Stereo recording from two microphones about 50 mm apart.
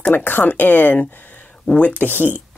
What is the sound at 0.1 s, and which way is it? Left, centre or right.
Speech, left.